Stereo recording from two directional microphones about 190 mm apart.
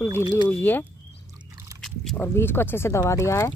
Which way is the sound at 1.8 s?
Centre (ahead or behind).